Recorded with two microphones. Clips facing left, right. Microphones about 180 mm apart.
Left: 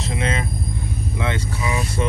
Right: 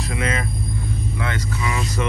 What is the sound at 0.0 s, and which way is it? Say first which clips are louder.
Vehicle: even; 30° left (ahead or behind).